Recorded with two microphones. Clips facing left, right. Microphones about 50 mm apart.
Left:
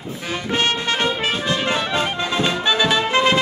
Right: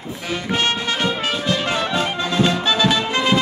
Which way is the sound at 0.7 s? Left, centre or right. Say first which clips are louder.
Left 1 dB; left.